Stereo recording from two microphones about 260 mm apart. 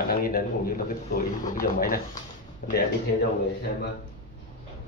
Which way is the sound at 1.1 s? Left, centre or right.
Left.